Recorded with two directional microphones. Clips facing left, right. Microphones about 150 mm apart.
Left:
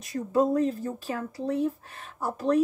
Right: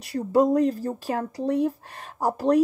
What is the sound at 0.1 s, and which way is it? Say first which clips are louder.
Speech: right 4 dB; 35° right (ahead or behind).